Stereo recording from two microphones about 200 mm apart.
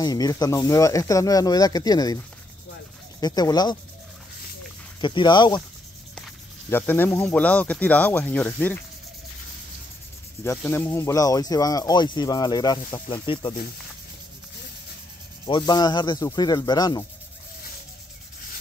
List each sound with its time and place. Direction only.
0.0 s speech: 20° left (ahead or behind)
3.2 s speech: 20° left (ahead or behind)
5.0 s speech: 25° left (ahead or behind)
6.7 s speech: 10° left (ahead or behind)
10.4 s speech: 10° left (ahead or behind)
15.4 s speech: 20° left (ahead or behind)